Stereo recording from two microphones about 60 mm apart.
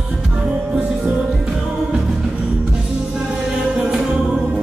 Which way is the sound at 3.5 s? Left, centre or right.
Centre.